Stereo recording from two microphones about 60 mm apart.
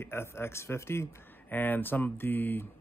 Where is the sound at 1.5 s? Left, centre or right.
Left.